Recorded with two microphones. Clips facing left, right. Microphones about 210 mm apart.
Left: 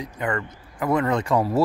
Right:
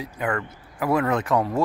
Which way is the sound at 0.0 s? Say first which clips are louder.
Even; 5° right (ahead or behind).